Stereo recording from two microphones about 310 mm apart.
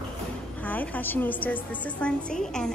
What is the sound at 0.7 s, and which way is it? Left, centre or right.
A woman's voice, centre.